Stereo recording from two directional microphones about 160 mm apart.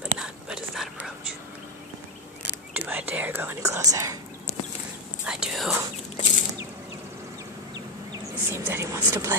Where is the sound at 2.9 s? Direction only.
10° right (ahead or behind).